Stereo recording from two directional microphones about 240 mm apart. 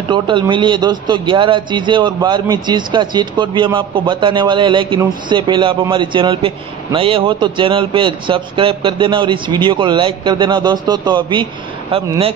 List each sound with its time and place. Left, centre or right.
0.1 s a man's voice: centre